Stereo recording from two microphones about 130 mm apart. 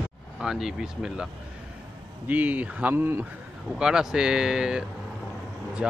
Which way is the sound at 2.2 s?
10° right (ahead or behind).